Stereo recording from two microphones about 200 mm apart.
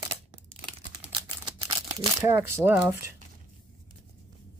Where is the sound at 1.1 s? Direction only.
25° right (ahead or behind).